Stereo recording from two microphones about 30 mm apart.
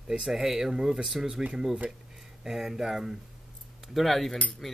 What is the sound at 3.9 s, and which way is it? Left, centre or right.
Speech, centre.